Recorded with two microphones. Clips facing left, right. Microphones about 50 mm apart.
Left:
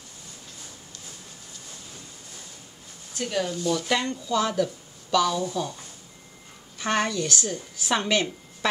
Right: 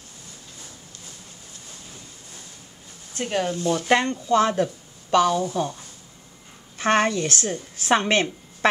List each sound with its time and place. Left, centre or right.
3.2 s a woman's voice: right
5.3 s speech: right
6.8 s a woman's voice: right